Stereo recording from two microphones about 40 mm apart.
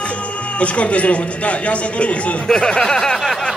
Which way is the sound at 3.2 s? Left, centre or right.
Centre.